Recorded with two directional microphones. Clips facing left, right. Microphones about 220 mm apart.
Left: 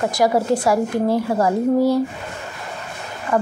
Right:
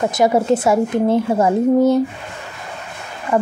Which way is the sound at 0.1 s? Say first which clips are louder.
Right 3 dB; 20° right (ahead or behind).